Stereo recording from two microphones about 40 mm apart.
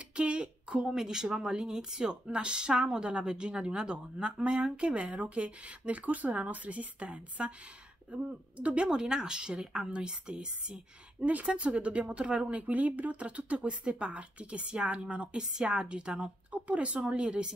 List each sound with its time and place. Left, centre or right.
0.1 s a sound: right
0.8 s speech: centre; by 8.8 s right
8.8 s speech: centre